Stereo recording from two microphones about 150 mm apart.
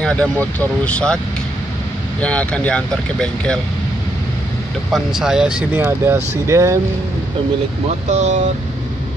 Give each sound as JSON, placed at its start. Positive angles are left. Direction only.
{"t": 0.0, "sound": "speech", "side_deg": 5}
{"t": 4.9, "sound": "speech", "side_deg": -5}
{"t": 5.8, "sound": "speech", "side_deg": -15}
{"t": 8.1, "sound": "speech", "side_deg": -50}